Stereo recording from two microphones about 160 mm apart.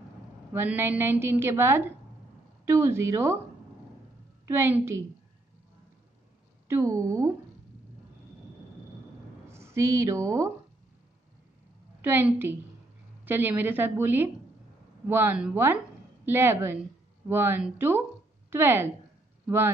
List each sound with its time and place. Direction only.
0.5 s a woman's voice: 10° right (ahead or behind)
4.5 s a woman's voice: 15° right (ahead or behind)
6.7 s speech: 20° right (ahead or behind)
9.5 s a woman's voice: 15° right (ahead or behind)
12.0 s a woman's voice: 15° right (ahead or behind)